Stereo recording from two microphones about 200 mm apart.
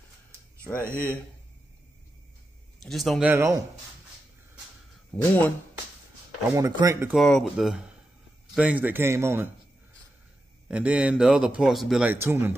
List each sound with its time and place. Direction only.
2.8 s speech: centre (ahead or behind)
5.1 s speech: 10° left (ahead or behind)
6.5 s speech: 20° right (ahead or behind)
7.2 s speech: centre (ahead or behind)
10.7 s speech: 5° right (ahead or behind)